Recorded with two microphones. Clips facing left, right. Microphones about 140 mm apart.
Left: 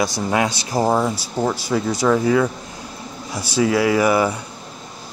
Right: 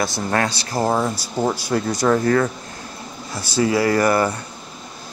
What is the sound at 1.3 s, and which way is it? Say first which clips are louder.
Speech: right 1 dB; centre (ahead or behind).